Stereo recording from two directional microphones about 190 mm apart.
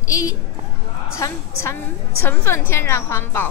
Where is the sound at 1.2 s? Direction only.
15° left (ahead or behind).